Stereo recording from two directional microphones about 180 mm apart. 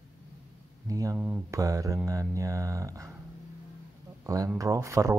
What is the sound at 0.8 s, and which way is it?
Speech, 20° right (ahead or behind).